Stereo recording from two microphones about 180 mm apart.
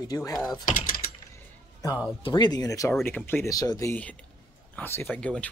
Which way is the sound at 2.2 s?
25° left (ahead or behind).